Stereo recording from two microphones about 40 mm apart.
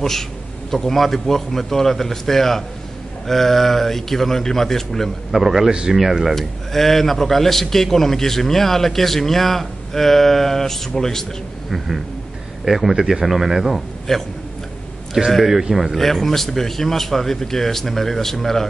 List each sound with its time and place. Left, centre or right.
0.7 s a man's voice: centre
5.4 s speech: centre
5.7 s speech: centre
5.9 s speech: centre
6.3 s a man's voice: centre
12.6 s speech: centre
14.1 s a man's voice: centre
15.2 s speech: centre
16.0 s a man's voice: centre